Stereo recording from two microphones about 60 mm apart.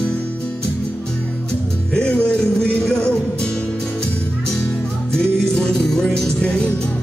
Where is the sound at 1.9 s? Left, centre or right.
Centre.